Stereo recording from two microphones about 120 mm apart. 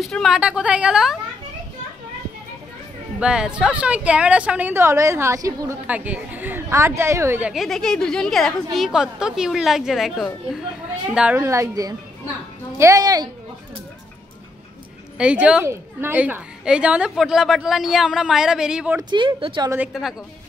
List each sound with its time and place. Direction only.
0.0 s a woman's voice: centre (ahead or behind)
3.2 s a woman's voice: 5° right (ahead or behind); by 5.8 s 25° right (ahead or behind)
5.9 s a woman's voice: 10° right (ahead or behind)
7.5 s a woman's voice: centre (ahead or behind)
11.3 s a woman's voice: 25° right (ahead or behind)
15.1 s a woman's voice: 10° right (ahead or behind)
15.6 s a woman's voice: 20° right (ahead or behind)
18.9 s speech: 40° right (ahead or behind)
19.9 s a woman's voice: centre (ahead or behind)